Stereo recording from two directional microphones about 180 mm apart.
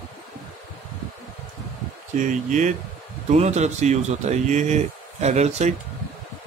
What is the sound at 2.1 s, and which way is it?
Speech, 45° right (ahead or behind).